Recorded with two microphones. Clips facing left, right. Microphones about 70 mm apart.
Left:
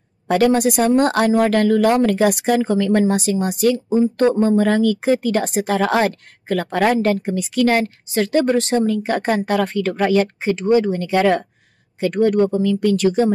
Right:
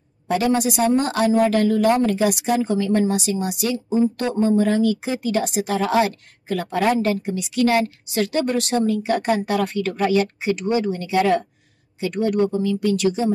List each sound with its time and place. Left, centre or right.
0.6 s a woman's voice: left
8.8 s a woman's voice: left